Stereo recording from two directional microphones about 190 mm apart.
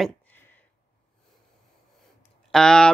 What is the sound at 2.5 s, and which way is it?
Speech, 5° left (ahead or behind).